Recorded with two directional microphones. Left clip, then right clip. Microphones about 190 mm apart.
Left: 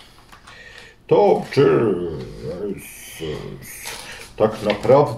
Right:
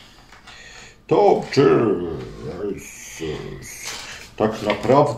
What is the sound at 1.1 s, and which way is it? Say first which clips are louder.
Speech: left 1 dB; 5° right (ahead or behind).